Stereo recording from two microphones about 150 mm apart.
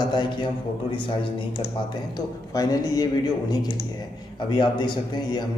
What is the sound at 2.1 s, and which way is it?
A man's voice, 25° left (ahead or behind).